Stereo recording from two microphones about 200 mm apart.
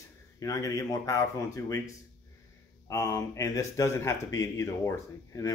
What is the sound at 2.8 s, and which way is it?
Speech, 15° left (ahead or behind).